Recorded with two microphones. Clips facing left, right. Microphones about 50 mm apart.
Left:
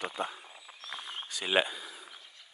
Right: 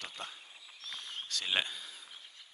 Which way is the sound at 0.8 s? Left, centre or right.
Left.